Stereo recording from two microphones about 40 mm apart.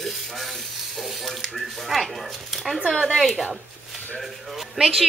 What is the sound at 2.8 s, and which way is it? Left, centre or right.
Speech, right.